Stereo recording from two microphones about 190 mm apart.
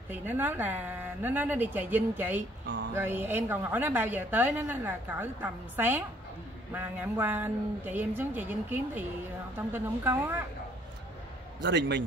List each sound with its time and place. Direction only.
0.1 s a woman's voice: 10° right (ahead or behind)
2.6 s a sound: 65° right (ahead or behind)
2.9 s a woman's voice: 10° right (ahead or behind)
11.6 s a man's voice: 65° right (ahead or behind)